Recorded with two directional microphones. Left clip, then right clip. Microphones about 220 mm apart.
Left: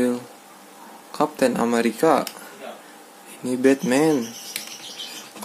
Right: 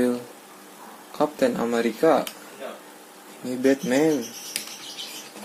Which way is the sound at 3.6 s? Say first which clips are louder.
Left 2 dB; 20° left (ahead or behind).